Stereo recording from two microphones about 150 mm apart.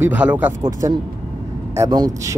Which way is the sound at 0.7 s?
20° right (ahead or behind).